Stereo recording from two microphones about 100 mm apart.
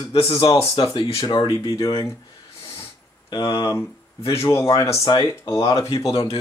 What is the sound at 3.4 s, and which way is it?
Speech, 60° left (ahead or behind).